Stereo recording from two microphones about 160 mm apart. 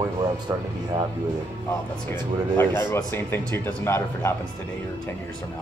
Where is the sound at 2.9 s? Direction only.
15° left (ahead or behind).